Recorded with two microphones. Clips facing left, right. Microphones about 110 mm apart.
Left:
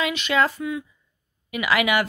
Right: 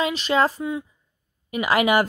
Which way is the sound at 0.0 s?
35° right (ahead or behind).